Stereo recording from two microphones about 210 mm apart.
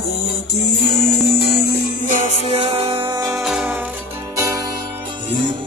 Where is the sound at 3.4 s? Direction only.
5° right (ahead or behind).